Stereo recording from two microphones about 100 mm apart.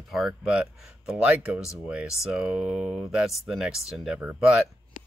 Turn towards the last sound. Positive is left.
turn(degrees=-10)  # may be behind; listen again after turning